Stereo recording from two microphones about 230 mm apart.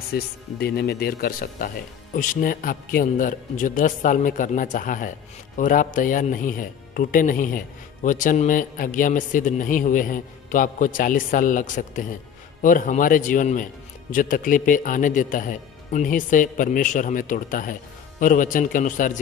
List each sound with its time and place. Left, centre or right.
0.1 s speech: left